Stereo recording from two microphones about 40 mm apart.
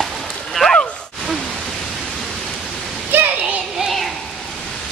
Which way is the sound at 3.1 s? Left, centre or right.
Right.